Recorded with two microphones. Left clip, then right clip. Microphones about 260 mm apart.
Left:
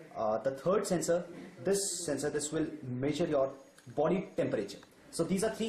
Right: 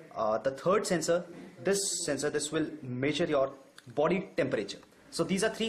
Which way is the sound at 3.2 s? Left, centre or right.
Right.